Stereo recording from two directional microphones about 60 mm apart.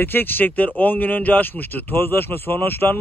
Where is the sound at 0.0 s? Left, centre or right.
Left.